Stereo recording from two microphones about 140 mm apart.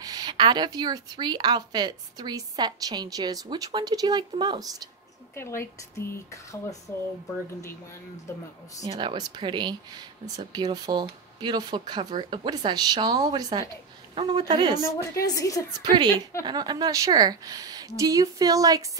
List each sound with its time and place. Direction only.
0.0 s a woman's voice: 30° right (ahead or behind)
5.3 s speech: 20° left (ahead or behind)
8.8 s a woman's voice: 30° right (ahead or behind)
14.8 s speech: 20° left (ahead or behind)
15.8 s a woman's voice: 30° right (ahead or behind)